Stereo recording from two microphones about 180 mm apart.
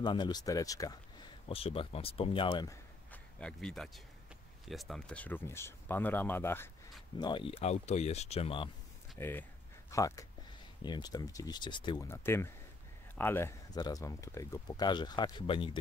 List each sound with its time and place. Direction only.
0.0 s speech: 25° left (ahead or behind)
1.5 s speech: 30° left (ahead or behind)
2.7 s a sound: 5° left (ahead or behind)
4.6 s speech: centre (ahead or behind)
7.2 s speech: 25° left (ahead or behind)
9.2 s speech: 10° left (ahead or behind)
12.1 s speech: 15° left (ahead or behind); by 15.8 s 30° left (ahead or behind)